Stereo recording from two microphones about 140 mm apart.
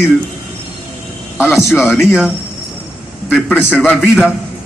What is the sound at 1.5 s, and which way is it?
Speech, 5° right (ahead or behind).